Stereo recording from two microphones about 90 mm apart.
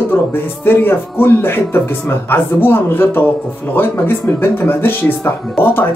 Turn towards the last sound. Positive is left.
turn(degrees=20)  # may be behind; listen again after turning